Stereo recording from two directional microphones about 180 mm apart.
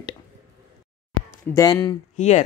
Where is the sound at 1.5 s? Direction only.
20° left (ahead or behind).